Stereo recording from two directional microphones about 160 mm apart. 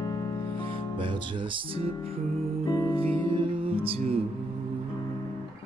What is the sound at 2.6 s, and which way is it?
Music, 20° left (ahead or behind).